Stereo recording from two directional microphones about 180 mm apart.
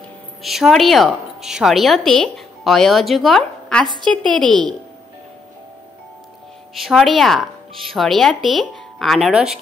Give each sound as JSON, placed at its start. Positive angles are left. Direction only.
{"t": 0.4, "sound": "a woman's voice", "side_deg": 0}
{"t": 6.7, "sound": "a woman's voice", "side_deg": 0}